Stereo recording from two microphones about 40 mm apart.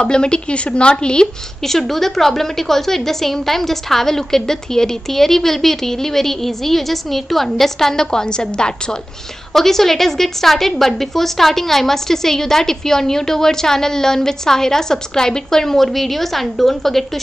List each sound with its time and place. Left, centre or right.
0.0 s speech: left
1.6 s a woman's voice: centre
9.5 s a woman's voice: centre